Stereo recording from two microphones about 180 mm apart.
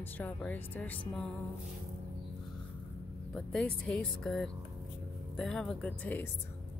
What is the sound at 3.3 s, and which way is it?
Speech, 5° left (ahead or behind).